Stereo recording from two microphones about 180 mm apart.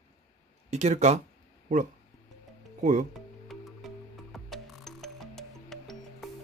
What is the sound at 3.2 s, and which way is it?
Music, centre (ahead or behind).